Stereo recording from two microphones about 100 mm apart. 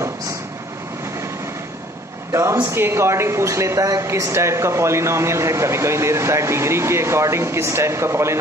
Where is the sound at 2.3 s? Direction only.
30° right (ahead or behind).